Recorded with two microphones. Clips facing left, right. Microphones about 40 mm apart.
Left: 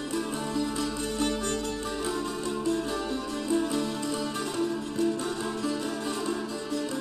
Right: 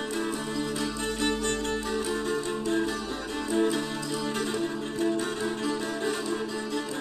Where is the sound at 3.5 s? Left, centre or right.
Right.